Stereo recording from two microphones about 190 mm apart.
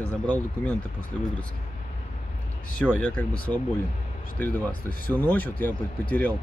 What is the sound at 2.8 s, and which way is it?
Speech, 5° left (ahead or behind).